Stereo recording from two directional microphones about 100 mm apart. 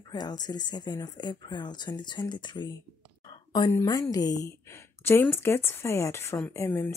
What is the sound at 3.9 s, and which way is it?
Speech, 35° left (ahead or behind).